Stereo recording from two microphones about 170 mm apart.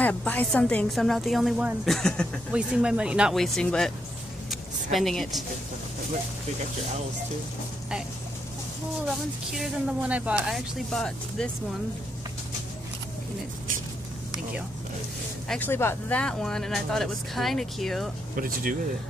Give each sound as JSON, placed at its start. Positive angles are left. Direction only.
{"t": 0.0, "sound": "a woman's voice", "side_deg": 10}
{"t": 4.9, "sound": "a woman's voice", "side_deg": 0}
{"t": 9.6, "sound": "a woman's voice", "side_deg": -5}
{"t": 15.4, "sound": "a woman's voice", "side_deg": 5}
{"t": 18.3, "sound": "speech", "side_deg": -55}